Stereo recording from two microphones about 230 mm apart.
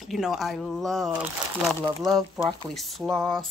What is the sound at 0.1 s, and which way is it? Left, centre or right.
Speech, centre.